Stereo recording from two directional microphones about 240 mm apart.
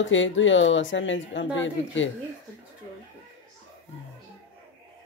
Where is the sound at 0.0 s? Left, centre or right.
Left.